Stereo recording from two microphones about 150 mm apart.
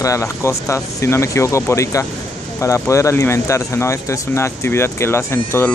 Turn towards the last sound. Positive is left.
turn(degrees=15)  # may be behind; listen again after turning